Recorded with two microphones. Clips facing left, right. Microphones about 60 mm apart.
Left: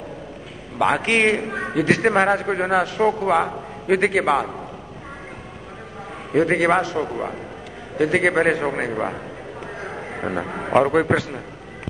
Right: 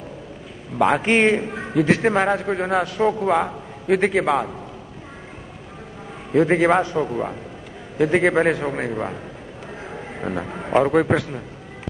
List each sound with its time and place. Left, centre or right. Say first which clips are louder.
0.7 s a man's voice: right 1 dB; centre
1.4 s a man's voice: left 2 dB; centre
1.8 s a man's voice: even; centre
6.3 s a man's voice: right 1 dB; centre
9.8 s a sound: left 1 dB; centre
10.7 s a man's voice: even; centre